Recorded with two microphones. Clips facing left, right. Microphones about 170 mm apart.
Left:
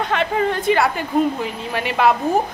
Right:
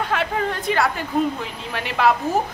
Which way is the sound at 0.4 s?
Centre (ahead or behind).